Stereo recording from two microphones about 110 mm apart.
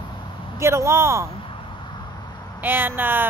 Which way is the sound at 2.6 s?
20° right (ahead or behind).